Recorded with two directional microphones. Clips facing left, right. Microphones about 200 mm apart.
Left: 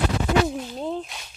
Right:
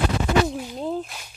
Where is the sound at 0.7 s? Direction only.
Centre (ahead or behind).